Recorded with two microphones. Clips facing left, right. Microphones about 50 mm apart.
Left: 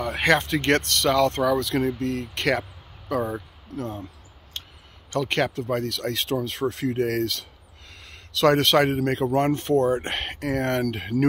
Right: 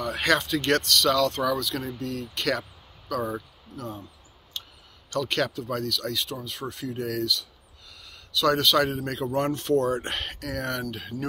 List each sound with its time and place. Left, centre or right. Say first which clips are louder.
0.0 s speech: left 3 dB; left
1.9 s speech: left 6 dB; left
3.7 s speech: left 5 dB; left
4.6 s a sound: left 1 dB; left
5.1 s speech: left 3 dB; left
6.1 s speech: left 6 dB; left